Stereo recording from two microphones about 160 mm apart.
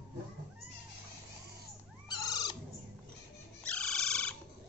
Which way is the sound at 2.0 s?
25° left (ahead or behind).